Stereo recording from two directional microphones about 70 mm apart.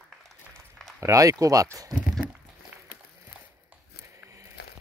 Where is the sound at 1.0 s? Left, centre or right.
Right.